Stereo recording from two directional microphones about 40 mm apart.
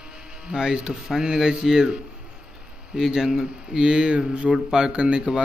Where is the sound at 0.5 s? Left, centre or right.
Centre.